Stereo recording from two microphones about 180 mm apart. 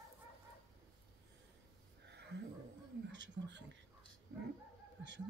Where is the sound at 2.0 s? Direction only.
70° right (ahead or behind).